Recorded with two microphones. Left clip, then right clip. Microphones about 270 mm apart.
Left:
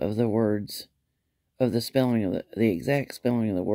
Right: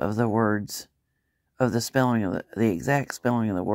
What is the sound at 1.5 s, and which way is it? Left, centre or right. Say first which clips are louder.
Speech: right 1 dB; right.